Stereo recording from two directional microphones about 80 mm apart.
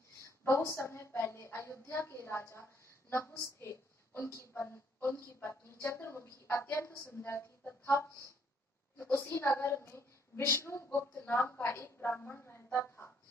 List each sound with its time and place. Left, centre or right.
0.5 s a woman's voice: left
8.9 s a woman's voice: left
9.3 s a woman's voice: left
12.7 s a sound: left